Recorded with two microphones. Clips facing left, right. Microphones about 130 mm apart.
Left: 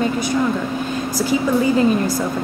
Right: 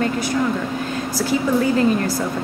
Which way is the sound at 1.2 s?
15° left (ahead or behind).